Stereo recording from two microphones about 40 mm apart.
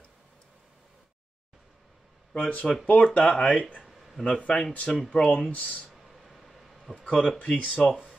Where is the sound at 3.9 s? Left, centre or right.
Centre.